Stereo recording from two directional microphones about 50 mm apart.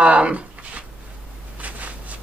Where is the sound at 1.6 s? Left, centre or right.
Right.